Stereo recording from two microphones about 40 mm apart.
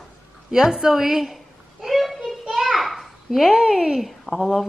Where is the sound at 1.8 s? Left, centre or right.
Centre.